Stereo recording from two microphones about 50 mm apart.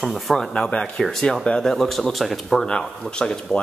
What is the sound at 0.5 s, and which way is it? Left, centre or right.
Speech, left.